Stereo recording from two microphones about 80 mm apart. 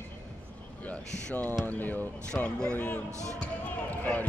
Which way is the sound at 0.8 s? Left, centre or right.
Centre.